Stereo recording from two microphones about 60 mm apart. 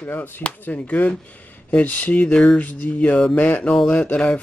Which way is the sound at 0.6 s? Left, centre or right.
Left.